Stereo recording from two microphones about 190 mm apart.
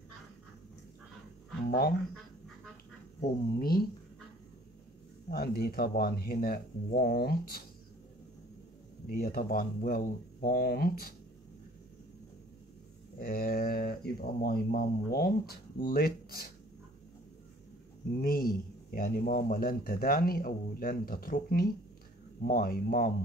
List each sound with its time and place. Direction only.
3.2 s speech: 55° left (ahead or behind)
5.3 s speech: 55° left (ahead or behind)
9.0 s speech: 50° left (ahead or behind)
13.2 s speech: 50° left (ahead or behind)
18.2 s speech: 50° left (ahead or behind)